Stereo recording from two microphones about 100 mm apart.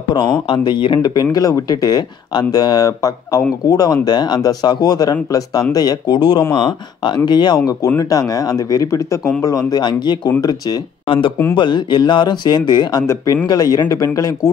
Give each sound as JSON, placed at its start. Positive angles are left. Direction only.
{"t": 0.1, "sound": "speech", "side_deg": 50}
{"t": 11.1, "sound": "speech", "side_deg": 60}
{"t": 13.0, "sound": "speech", "side_deg": 30}
{"t": 13.5, "sound": "speech", "side_deg": 40}